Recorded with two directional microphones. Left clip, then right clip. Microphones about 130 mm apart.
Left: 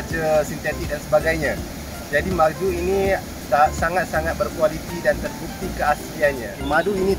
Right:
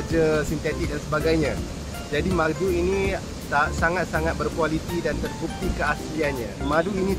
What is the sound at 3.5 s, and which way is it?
Speech, 20° right (ahead or behind).